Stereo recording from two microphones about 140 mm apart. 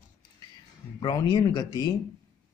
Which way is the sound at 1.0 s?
30° left (ahead or behind).